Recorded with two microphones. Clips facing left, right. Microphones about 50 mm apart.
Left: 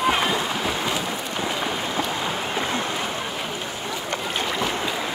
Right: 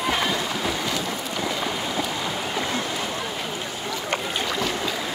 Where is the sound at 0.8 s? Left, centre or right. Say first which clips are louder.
Left 1 dB; left.